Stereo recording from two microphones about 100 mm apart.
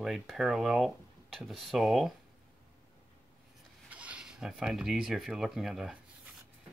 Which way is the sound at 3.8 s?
15° right (ahead or behind).